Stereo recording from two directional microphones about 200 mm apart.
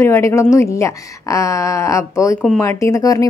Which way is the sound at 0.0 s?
10° left (ahead or behind).